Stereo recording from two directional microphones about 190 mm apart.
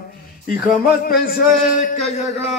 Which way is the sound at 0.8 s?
50° left (ahead or behind).